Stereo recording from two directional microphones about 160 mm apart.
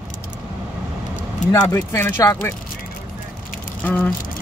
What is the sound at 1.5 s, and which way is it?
Speech, 15° left (ahead or behind).